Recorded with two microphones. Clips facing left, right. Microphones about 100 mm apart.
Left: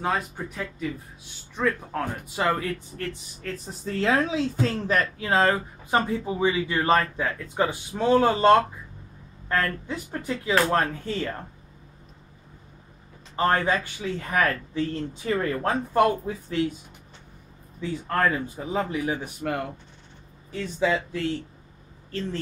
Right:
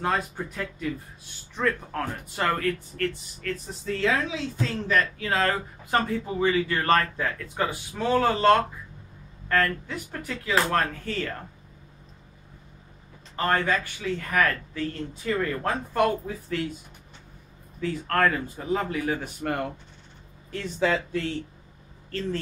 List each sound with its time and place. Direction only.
0.0 s speech: centre (ahead or behind)
3.4 s speech: 20° left (ahead or behind)
3.8 s speech: 40° left (ahead or behind)
5.4 s speech: 15° left (ahead or behind)
13.4 s speech: 25° left (ahead or behind)
17.7 s speech: 15° left (ahead or behind)
20.5 s speech: 5° left (ahead or behind)